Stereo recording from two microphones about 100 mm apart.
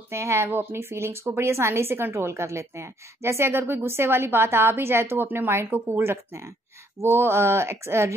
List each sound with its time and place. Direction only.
0.1 s a woman's voice: 25° right (ahead or behind)